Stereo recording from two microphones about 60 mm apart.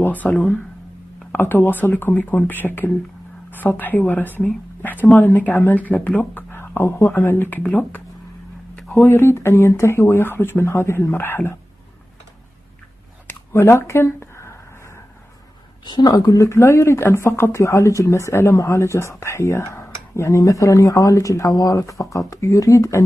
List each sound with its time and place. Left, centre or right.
0.0 s speech: left
1.3 s speech: left
9.0 s speech: left
13.3 s a sound: left
16.1 s speech: left